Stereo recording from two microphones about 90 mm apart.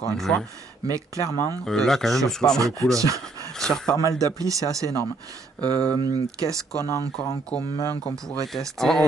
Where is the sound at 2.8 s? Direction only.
40° right (ahead or behind).